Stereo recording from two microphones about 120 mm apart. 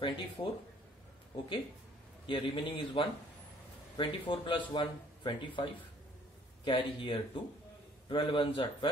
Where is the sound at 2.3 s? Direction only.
45° left (ahead or behind).